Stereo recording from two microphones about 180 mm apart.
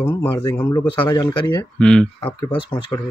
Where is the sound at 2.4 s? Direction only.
20° left (ahead or behind).